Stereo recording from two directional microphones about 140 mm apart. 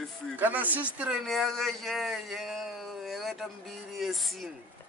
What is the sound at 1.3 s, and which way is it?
Speech, centre (ahead or behind).